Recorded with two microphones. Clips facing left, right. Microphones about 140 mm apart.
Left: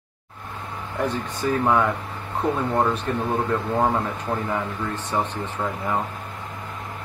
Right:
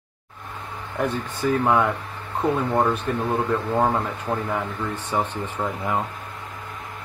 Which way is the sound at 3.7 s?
5° right (ahead or behind).